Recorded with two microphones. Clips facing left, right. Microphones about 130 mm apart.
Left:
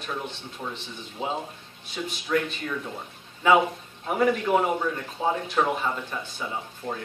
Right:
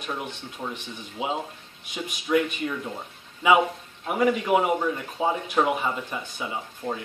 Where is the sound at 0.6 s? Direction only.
20° right (ahead or behind).